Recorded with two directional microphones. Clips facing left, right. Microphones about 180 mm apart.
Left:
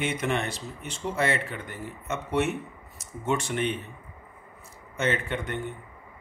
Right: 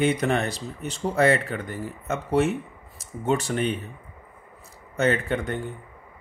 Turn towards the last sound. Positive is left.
turn(degrees=-35)  # may be behind; listen again after turning